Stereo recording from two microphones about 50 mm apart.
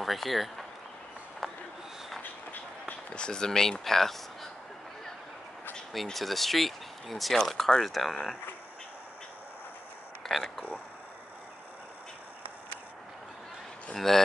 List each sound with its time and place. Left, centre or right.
0.0 s speech: centre
1.4 s a sound: centre
2.5 s run: left
3.2 s speech: centre
6.1 s speech: centre
10.2 s speech: centre
13.9 s speech: centre